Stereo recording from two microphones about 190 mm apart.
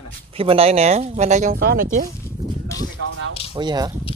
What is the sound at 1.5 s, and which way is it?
Speech, 55° right (ahead or behind).